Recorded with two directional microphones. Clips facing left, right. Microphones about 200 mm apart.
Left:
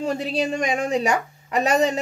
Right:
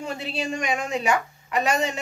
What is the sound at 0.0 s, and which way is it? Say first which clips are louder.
A woman's voice: left 6 dB; 40° left (ahead or behind).